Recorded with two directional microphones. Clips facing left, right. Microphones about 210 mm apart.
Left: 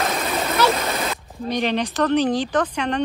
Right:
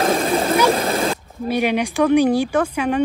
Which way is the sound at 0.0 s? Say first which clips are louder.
Right 6 dB; 30° right (ahead or behind).